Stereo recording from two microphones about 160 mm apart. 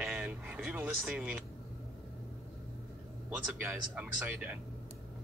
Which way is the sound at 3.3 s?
5° right (ahead or behind).